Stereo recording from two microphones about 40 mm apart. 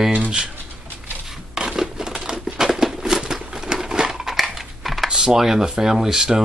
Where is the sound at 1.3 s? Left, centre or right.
Centre.